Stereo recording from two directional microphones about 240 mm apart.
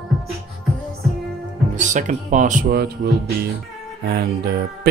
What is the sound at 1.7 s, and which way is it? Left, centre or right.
Speech, right.